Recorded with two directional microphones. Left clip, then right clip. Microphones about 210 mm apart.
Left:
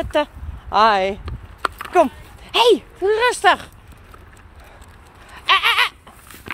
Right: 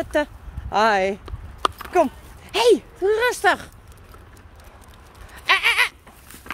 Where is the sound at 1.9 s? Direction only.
5° right (ahead or behind).